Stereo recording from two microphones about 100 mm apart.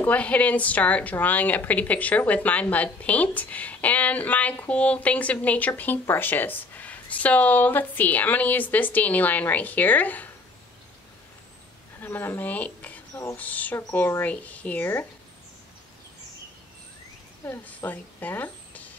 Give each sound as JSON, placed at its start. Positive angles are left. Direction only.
{"t": 0.0, "sound": "a woman's voice", "side_deg": 15}
{"t": 12.0, "sound": "speech", "side_deg": 20}
{"t": 13.1, "sound": "speech", "side_deg": 30}
{"t": 13.4, "sound": "a woman's voice", "side_deg": 15}
{"t": 17.6, "sound": "a woman's voice", "side_deg": 15}